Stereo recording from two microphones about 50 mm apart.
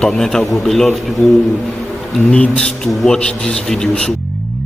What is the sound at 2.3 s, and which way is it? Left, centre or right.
Speech, left.